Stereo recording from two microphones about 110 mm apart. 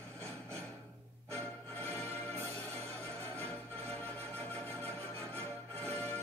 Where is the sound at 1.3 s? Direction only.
15° left (ahead or behind).